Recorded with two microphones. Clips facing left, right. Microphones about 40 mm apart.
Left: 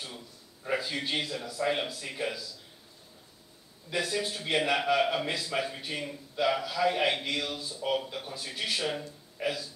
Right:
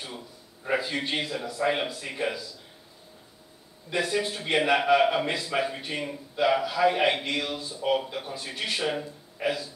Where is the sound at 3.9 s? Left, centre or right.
Centre.